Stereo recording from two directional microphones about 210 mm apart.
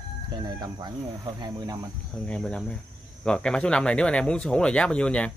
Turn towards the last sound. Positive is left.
turn(degrees=5)  # may be behind; listen again after turning